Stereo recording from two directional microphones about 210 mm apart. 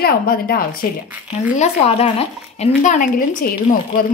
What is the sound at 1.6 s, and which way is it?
A woman's voice, 30° left (ahead or behind).